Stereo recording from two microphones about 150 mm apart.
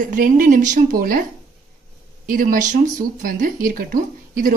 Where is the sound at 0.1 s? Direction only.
65° right (ahead or behind).